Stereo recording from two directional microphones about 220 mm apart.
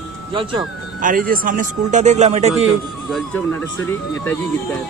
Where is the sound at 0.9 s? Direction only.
40° right (ahead or behind).